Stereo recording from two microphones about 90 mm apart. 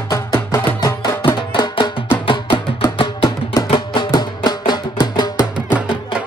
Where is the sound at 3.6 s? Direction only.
60° left (ahead or behind).